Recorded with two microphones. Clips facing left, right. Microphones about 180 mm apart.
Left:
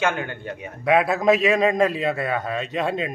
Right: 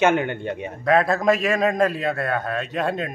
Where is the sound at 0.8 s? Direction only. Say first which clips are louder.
Even; 5° left (ahead or behind).